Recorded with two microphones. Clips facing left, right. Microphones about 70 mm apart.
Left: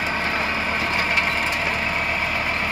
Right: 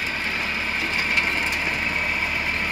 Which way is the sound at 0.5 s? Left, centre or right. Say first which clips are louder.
Left 3 dB; left.